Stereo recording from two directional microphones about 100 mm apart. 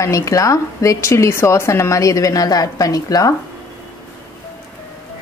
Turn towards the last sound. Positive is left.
turn(degrees=35)  # may be behind; listen again after turning